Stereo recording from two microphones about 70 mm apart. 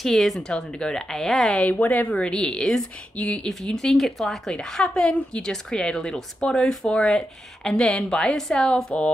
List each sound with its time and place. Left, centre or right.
0.0 s speech: centre
1.6 s a woman's voice: left